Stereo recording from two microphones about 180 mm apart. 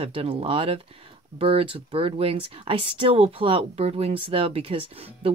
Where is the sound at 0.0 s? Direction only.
30° right (ahead or behind).